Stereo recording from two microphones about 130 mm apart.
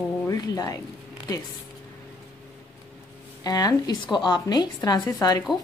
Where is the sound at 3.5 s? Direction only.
30° left (ahead or behind).